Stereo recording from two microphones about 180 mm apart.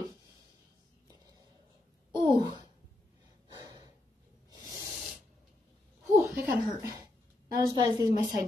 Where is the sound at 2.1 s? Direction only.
25° right (ahead or behind).